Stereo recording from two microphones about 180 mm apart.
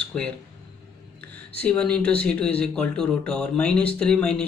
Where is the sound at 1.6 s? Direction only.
5° left (ahead or behind).